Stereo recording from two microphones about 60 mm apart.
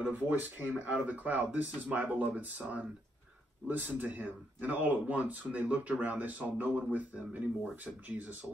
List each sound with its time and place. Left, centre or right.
0.0 s speech: right